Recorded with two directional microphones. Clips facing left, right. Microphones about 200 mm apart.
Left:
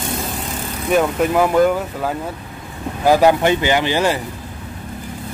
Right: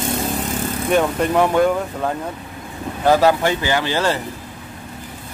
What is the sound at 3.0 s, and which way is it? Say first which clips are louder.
Speech: left 2 dB; 15° left (ahead or behind).